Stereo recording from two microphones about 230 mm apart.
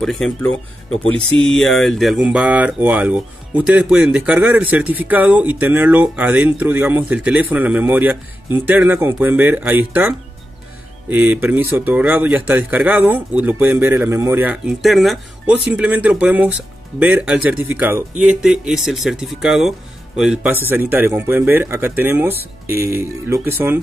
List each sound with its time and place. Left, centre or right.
0.0 s speech: centre
1.5 s speech: centre